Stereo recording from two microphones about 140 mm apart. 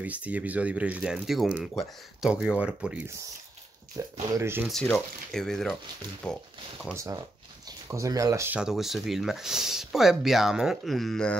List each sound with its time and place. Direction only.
0.0 s speech: 10° right (ahead or behind)
3.9 s speech: 20° right (ahead or behind)
4.6 s speech: 5° left (ahead or behind)
7.0 s speech: 25° right (ahead or behind)
8.5 s speech: 5° right (ahead or behind)